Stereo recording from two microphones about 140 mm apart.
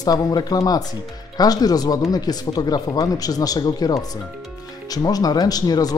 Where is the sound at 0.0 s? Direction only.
25° left (ahead or behind).